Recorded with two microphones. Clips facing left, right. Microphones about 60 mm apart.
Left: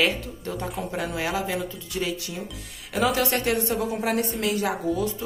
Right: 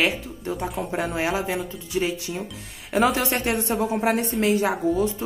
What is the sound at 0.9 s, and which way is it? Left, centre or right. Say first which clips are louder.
A woman's voice: right 3 dB; right.